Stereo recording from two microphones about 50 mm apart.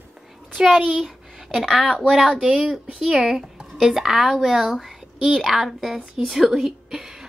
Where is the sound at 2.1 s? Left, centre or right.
Centre.